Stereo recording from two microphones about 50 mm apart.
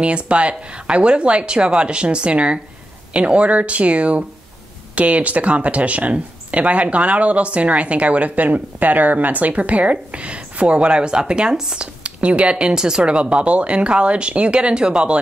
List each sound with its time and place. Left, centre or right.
0.0 s speech: right